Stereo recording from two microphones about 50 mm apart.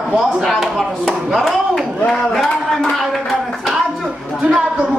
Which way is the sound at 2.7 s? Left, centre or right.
Centre.